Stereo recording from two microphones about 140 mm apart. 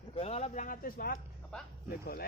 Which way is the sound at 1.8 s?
90° left.